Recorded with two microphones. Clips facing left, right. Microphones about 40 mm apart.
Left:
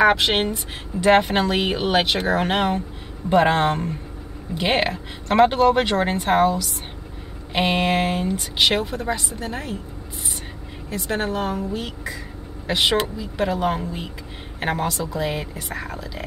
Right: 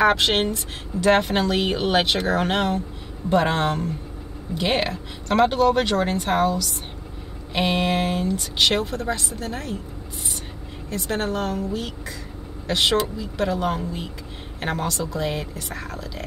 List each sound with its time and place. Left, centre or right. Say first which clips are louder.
0.0 s speech: left 1 dB; centre
10.9 s speech: left 1 dB; centre